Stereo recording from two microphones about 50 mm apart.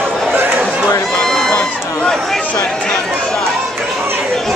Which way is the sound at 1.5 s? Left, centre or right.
Centre.